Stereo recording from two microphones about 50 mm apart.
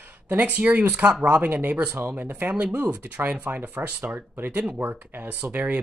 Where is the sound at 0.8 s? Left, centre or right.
Right.